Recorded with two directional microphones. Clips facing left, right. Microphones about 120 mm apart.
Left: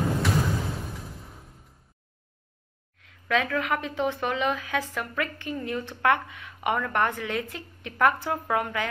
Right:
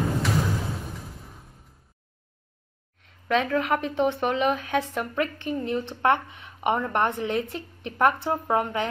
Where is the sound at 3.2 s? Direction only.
30° right (ahead or behind).